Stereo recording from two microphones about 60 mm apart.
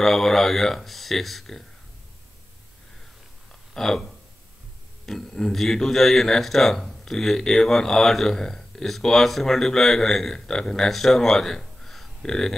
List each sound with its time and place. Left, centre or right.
0.0 s speech: centre
3.7 s a man's voice: centre